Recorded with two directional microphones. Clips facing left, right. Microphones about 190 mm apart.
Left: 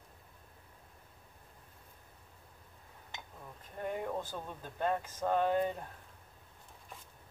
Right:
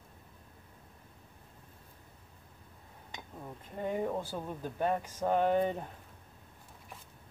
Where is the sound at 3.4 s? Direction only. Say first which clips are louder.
Right 3 dB; 15° right (ahead or behind).